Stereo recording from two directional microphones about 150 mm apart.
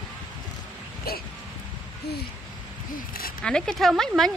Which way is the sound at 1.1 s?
90° left.